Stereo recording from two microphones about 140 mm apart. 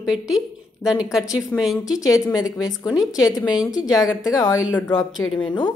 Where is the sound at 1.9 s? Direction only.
25° left (ahead or behind).